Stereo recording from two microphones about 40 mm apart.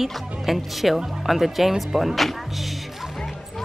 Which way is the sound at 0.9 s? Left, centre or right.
Centre.